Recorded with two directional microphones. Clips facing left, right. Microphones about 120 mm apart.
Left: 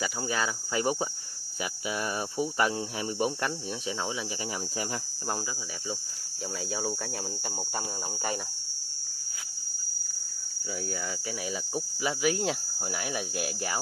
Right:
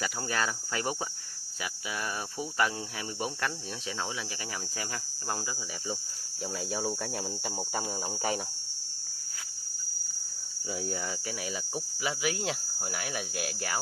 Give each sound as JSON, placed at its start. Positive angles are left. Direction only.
{"t": 0.0, "sound": "speech", "side_deg": 5}
{"t": 0.7, "sound": "cricket", "side_deg": 20}
{"t": 1.6, "sound": "speech", "side_deg": 20}
{"t": 6.7, "sound": "speech", "side_deg": 0}
{"t": 11.7, "sound": "speech", "side_deg": 0}